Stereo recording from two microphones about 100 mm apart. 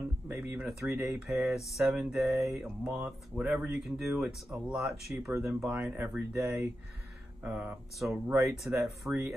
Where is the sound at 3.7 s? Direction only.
5° right (ahead or behind).